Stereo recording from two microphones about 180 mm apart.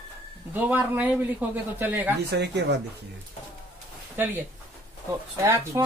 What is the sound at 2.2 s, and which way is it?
Speech, 70° right (ahead or behind).